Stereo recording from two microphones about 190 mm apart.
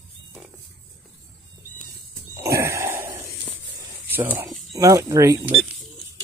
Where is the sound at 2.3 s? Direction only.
15° right (ahead or behind).